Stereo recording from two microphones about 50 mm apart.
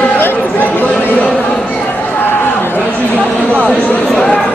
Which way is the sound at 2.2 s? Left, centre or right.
Left.